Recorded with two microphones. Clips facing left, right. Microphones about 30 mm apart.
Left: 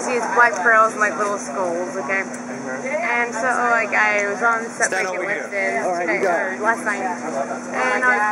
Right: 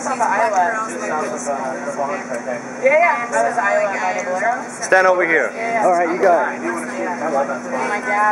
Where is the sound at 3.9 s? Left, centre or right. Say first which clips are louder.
Left 3 dB; centre.